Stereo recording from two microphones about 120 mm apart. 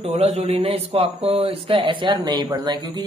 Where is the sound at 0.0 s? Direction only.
60° right (ahead or behind).